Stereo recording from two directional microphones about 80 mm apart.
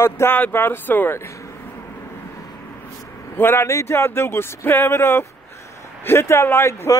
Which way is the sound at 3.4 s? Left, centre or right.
Left.